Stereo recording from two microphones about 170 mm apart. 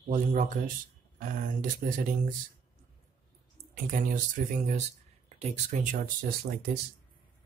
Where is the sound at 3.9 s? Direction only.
50° right (ahead or behind).